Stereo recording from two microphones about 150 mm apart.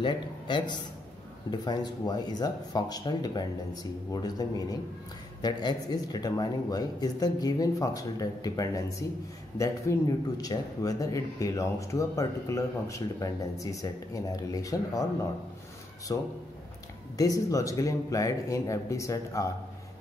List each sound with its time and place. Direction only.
0.0 s speech: 30° left (ahead or behind)
16.1 s speech: 25° left (ahead or behind)